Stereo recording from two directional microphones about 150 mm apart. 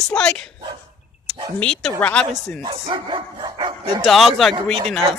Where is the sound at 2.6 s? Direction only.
35° right (ahead or behind).